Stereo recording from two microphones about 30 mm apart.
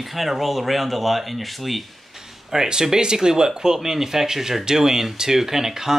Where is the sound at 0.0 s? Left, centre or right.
Centre.